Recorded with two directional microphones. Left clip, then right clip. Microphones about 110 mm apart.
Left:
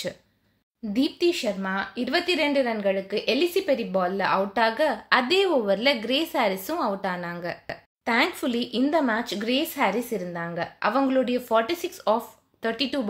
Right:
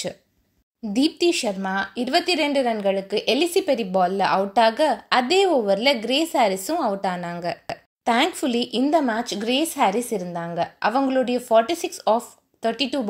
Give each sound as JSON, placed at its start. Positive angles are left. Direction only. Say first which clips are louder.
{"t": 0.9, "sound": "a woman's voice", "louder": "right 3 dB", "side_deg": -55}